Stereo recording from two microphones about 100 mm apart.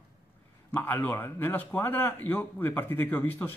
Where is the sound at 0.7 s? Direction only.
20° left (ahead or behind).